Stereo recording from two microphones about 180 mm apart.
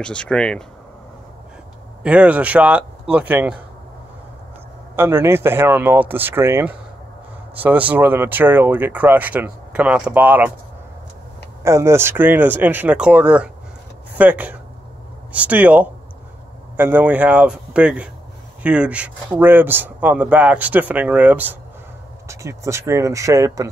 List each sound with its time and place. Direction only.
0.0 s speech: 5° left (ahead or behind)
2.0 s speech: 10° right (ahead or behind)
4.9 s speech: 15° right (ahead or behind)
11.6 s speech: 15° right (ahead or behind)